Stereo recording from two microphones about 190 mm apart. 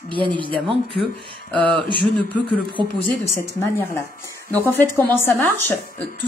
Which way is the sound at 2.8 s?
25° right (ahead or behind).